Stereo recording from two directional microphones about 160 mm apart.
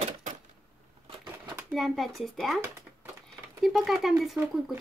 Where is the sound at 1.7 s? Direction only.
Centre (ahead or behind).